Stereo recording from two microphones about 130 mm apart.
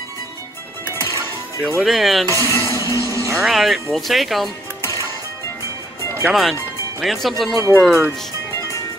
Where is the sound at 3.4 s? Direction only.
Centre (ahead or behind).